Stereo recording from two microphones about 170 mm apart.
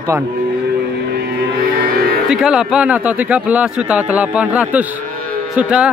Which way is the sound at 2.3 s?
5° right (ahead or behind).